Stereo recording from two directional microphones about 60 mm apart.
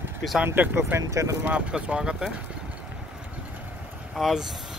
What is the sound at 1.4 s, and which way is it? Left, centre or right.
Speech, centre.